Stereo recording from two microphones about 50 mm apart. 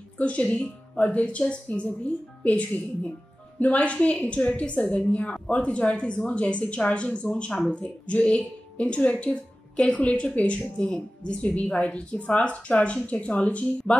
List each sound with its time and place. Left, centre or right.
0.6 s a woman's voice: left